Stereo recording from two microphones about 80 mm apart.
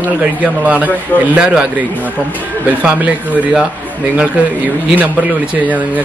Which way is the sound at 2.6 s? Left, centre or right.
Centre.